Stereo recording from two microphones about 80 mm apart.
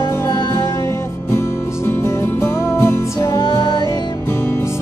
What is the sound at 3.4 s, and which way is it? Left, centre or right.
Music, left.